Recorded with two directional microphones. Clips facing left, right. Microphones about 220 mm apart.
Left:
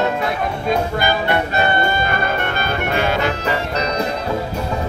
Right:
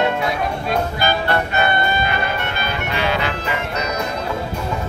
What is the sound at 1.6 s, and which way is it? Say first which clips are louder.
Music: left 1 dB; 40° left (ahead or behind).